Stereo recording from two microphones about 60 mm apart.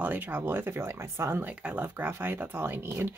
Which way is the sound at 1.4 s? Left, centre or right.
Centre.